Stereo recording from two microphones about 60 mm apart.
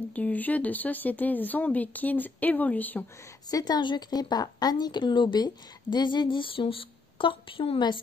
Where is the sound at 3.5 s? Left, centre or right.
Left.